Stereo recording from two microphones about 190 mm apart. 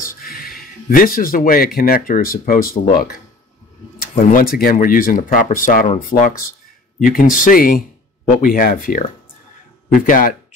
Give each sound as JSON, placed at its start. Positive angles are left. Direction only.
{"t": 0.0, "sound": "speech", "side_deg": 50}
{"t": 10.0, "sound": "speech", "side_deg": 45}